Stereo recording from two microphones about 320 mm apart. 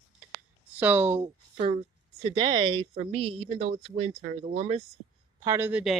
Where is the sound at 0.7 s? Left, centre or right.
Centre.